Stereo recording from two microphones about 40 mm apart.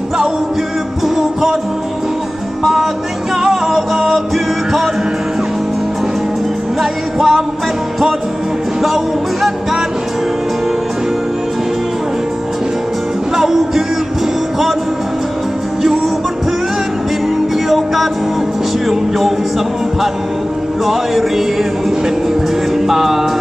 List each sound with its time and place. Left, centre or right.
1.0 s music: centre
3.4 s music: centre
6.8 s music: centre
8.8 s music: centre
17.6 s music: centre
20.8 s music: centre
22.8 s music: centre